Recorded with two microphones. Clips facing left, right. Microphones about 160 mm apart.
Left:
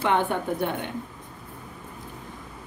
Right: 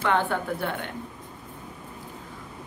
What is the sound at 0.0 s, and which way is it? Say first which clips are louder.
Speech: left 1 dB; 20° left (ahead or behind).